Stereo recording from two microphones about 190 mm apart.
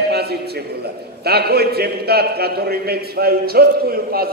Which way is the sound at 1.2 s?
55° right (ahead or behind).